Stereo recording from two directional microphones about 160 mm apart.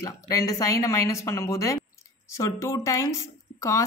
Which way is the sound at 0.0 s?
20° left (ahead or behind).